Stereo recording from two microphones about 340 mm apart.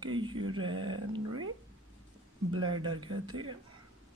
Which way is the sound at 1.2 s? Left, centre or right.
Right.